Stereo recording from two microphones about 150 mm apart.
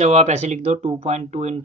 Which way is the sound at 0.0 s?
45° right (ahead or behind).